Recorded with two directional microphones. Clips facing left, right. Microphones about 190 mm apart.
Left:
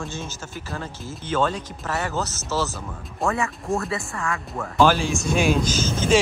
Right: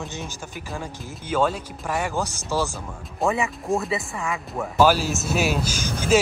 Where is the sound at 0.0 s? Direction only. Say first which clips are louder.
Left 1 dB; 15° right (ahead or behind).